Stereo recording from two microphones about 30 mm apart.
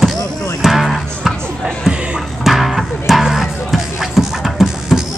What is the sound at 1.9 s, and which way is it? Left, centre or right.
Music, right.